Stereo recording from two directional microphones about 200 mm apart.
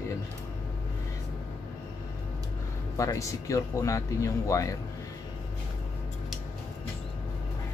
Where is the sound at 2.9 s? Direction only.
15° left (ahead or behind).